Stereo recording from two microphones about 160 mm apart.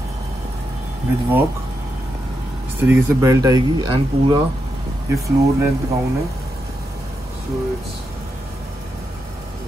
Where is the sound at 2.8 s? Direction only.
15° right (ahead or behind).